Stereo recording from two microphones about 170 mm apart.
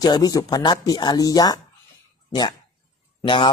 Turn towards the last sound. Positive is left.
turn(degrees=30)  # may be behind; listen again after turning